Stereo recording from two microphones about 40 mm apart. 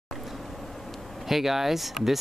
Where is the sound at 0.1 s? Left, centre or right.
Centre.